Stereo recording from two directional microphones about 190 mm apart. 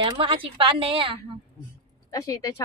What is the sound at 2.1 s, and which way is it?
Speech, 15° left (ahead or behind).